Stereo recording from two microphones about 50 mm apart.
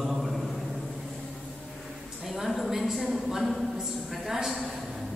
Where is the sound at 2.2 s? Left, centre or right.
Centre.